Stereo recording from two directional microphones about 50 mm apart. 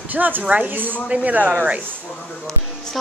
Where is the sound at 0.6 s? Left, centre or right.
Right.